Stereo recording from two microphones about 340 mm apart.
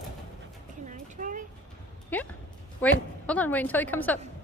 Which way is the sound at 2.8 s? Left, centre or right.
Centre.